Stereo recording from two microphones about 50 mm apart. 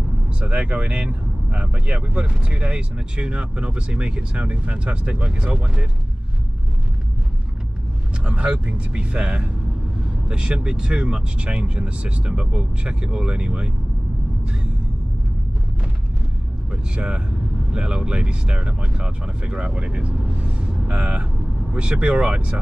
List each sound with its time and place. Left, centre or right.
0.4 s speech: right
8.3 s speech: right
16.7 s speech: centre